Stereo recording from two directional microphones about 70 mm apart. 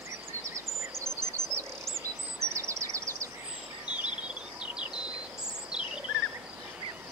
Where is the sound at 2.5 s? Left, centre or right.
Right.